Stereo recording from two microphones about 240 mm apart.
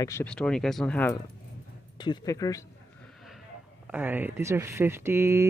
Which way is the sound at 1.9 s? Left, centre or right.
Centre.